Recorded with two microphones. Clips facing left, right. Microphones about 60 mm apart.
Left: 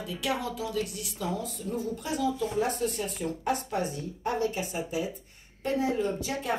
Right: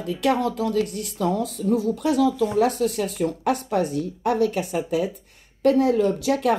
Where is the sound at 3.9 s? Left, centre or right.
Right.